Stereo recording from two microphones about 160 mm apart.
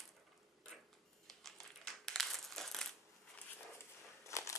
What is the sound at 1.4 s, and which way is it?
Crumpling, centre (ahead or behind).